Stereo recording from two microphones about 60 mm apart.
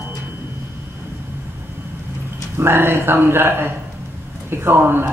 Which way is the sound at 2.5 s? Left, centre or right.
Right.